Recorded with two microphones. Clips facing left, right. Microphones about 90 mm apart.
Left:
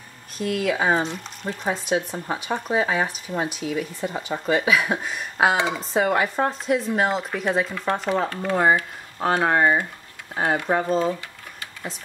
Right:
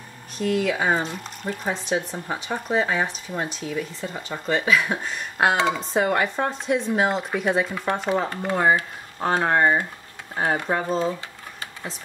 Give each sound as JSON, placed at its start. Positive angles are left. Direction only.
{"t": 0.4, "sound": "speech", "side_deg": 0}
{"t": 8.3, "sound": "speech", "side_deg": -15}
{"t": 9.4, "sound": "speech", "side_deg": 5}